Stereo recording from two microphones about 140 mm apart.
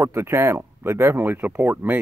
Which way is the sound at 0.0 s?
15° right (ahead or behind).